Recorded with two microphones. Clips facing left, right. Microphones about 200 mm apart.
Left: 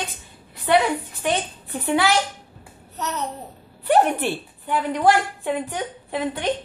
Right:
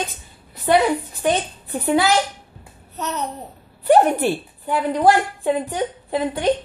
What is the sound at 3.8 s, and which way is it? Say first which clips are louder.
A woman's voice: right 4 dB; 40° right (ahead or behind).